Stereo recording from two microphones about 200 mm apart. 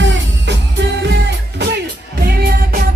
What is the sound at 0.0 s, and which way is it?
Music, 65° right (ahead or behind).